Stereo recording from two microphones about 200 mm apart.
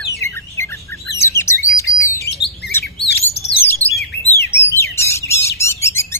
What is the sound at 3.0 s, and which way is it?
Bird, 55° left (ahead or behind).